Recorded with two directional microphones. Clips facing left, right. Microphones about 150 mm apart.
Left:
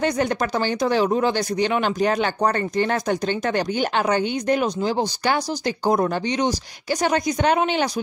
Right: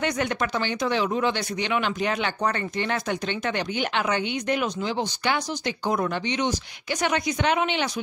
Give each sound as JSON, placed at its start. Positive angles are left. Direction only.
{"t": 0.0, "sound": "speech", "side_deg": 35}